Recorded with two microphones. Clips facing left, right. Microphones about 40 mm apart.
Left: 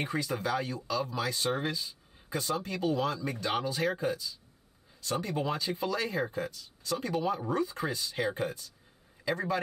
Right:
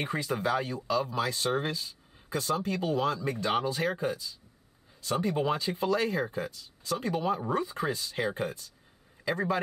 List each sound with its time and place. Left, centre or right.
0.0 s speech: right
5.1 s speech: right
8.2 s a man's voice: centre